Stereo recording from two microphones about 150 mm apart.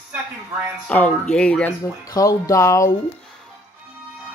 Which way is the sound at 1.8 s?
25° left (ahead or behind).